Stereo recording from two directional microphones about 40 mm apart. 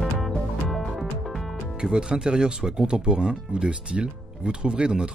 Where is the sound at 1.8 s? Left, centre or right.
Right.